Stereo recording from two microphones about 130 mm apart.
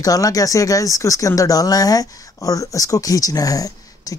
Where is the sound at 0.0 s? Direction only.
25° left (ahead or behind).